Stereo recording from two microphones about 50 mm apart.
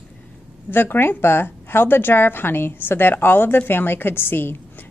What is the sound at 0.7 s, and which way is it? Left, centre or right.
A woman's voice, left.